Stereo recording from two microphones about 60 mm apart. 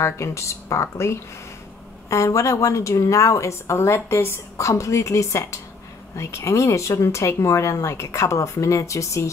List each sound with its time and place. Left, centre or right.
0.0 s speech: left
4.6 s speech: left